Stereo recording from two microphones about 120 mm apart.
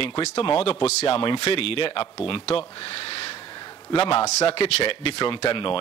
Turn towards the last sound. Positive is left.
turn(degrees=50)  # may be behind; listen again after turning